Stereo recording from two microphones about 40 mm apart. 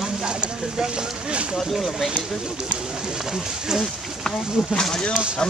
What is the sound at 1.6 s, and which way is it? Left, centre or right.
Speech, centre.